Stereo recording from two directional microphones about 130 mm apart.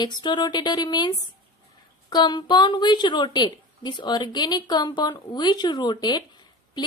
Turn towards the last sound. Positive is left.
turn(degrees=35)  # may be behind; listen again after turning